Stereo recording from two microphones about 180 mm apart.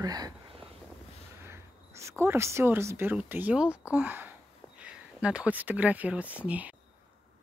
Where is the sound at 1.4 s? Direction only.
15° right (ahead or behind).